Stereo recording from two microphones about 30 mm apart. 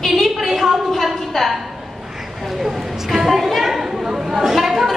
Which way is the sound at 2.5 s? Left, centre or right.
Centre.